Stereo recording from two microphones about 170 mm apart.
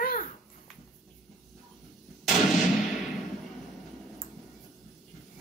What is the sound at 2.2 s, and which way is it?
Artillery fire, centre (ahead or behind).